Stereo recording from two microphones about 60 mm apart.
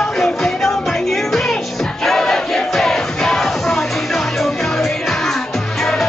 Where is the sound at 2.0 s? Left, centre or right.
Centre.